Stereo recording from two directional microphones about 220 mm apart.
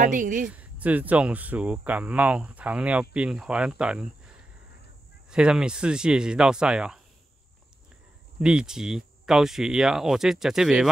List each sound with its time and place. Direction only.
0.0 s speech: 35° right (ahead or behind)
0.5 s speech: 5° right (ahead or behind)
5.3 s speech: 5° right (ahead or behind)
8.4 s speech: 5° right (ahead or behind)